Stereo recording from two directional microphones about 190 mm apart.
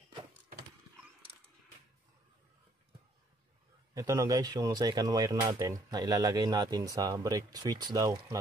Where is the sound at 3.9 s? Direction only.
15° right (ahead or behind).